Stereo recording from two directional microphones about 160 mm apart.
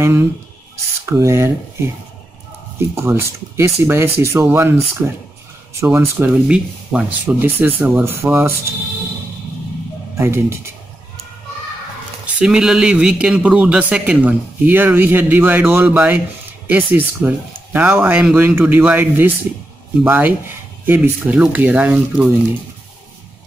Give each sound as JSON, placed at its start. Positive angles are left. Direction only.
{"t": 0.0, "sound": "a man's voice", "side_deg": -15}
{"t": 2.9, "sound": "a man's voice", "side_deg": -15}
{"t": 10.1, "sound": "a man's voice", "side_deg": -15}
{"t": 12.4, "sound": "a man's voice", "side_deg": -5}